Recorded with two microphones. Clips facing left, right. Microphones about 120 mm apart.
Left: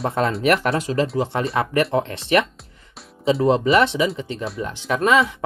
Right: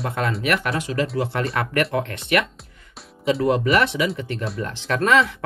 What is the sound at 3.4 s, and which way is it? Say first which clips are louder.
Speech: left 3 dB; 25° left (ahead or behind).